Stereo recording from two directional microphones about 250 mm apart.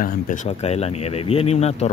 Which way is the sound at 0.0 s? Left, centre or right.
Left.